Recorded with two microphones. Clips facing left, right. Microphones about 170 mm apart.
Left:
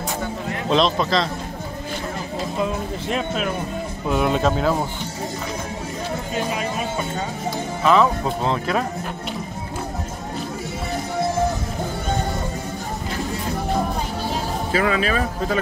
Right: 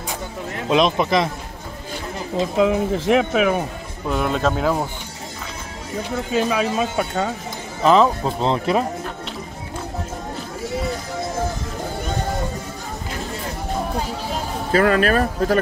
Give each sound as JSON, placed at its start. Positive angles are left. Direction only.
{"t": 0.7, "sound": "a man's voice", "side_deg": -10}
{"t": 2.5, "sound": "speech", "side_deg": -75}
{"t": 4.1, "sound": "speech", "side_deg": 5}
{"t": 6.3, "sound": "speech", "side_deg": -90}
{"t": 7.8, "sound": "speech", "side_deg": -30}
{"t": 14.7, "sound": "speech", "side_deg": -50}